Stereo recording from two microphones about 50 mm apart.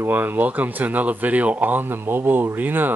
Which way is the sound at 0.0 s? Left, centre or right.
Right.